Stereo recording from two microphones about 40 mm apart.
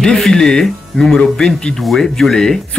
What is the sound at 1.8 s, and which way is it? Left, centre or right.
Speech, centre.